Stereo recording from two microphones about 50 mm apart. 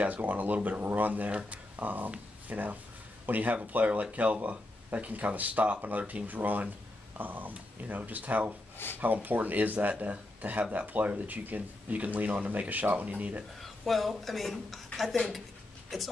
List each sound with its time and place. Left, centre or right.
0.0 s speech: right
13.6 s speech: centre